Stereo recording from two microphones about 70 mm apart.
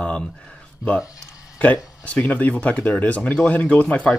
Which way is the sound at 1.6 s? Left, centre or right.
Left.